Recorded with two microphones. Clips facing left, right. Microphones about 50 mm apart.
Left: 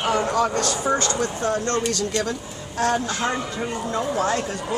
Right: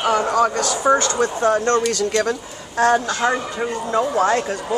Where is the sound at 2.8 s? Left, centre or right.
Right.